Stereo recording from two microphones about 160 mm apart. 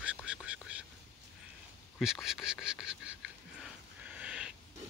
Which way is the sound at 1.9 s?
Centre (ahead or behind).